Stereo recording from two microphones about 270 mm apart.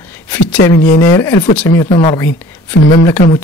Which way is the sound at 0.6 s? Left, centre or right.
Left.